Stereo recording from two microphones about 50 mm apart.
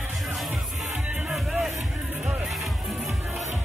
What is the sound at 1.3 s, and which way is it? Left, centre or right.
Music, centre.